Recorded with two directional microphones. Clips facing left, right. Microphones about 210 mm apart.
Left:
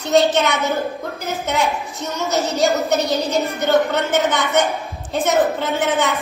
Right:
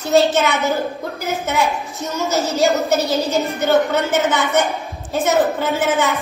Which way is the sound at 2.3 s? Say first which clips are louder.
Even; 15° left (ahead or behind).